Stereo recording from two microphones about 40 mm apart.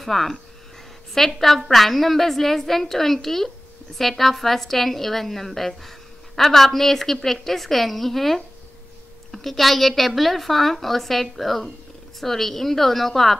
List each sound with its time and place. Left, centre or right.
0.0 s a woman's voice: centre